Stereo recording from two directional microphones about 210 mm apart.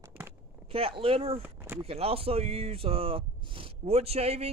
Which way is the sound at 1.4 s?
10° right (ahead or behind).